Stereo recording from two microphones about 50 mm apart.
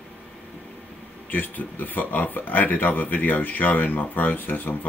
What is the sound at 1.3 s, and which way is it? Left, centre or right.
Speech, left.